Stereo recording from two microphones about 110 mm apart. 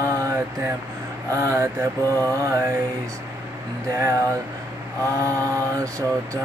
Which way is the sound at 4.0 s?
30° right (ahead or behind).